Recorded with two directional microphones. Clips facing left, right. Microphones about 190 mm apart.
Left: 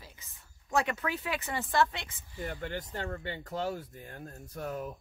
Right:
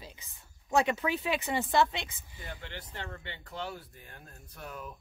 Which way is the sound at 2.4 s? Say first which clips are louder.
Left 7 dB; 45° left (ahead or behind).